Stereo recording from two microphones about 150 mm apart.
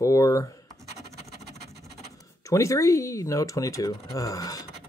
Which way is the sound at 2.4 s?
20° left (ahead or behind).